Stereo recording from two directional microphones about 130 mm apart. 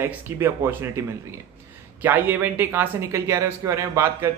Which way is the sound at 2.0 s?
15° right (ahead or behind).